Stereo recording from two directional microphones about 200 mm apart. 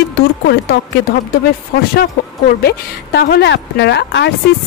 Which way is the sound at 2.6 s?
50° left (ahead or behind).